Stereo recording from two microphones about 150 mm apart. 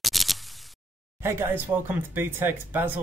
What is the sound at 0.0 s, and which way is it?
Single-lens reflex camera, centre (ahead or behind).